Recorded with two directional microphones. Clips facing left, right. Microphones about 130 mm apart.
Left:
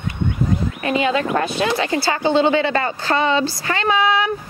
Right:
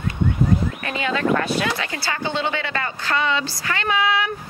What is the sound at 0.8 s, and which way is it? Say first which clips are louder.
Speech: left 5 dB; 20° left (ahead or behind).